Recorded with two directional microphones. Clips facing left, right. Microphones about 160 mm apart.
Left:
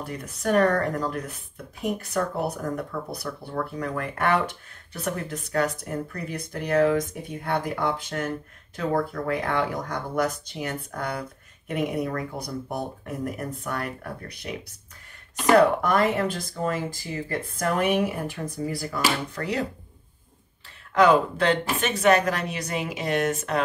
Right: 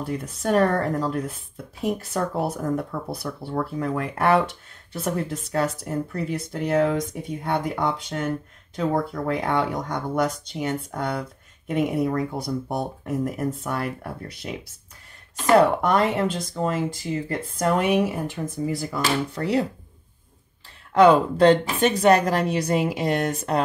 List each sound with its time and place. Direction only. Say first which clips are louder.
0.0 s speech: right 3 dB; 30° right (ahead or behind)
15.5 s speech: right 1 dB; 25° right (ahead or behind)
19.3 s speech: right 6 dB; 30° right (ahead or behind)
21.0 s speech: right 4 dB; 35° right (ahead or behind)